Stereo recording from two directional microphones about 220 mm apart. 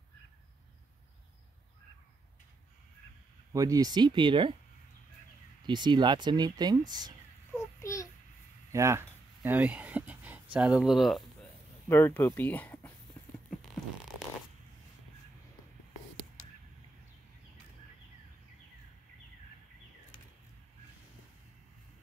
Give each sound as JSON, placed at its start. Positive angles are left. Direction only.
{"t": 3.5, "sound": "speech", "side_deg": -15}
{"t": 5.7, "sound": "speech", "side_deg": -20}
{"t": 7.5, "sound": "child singing", "side_deg": 15}
{"t": 8.7, "sound": "speech", "side_deg": -10}
{"t": 11.9, "sound": "speech", "side_deg": 10}